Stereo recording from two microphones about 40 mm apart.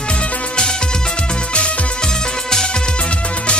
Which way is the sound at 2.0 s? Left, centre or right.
Centre.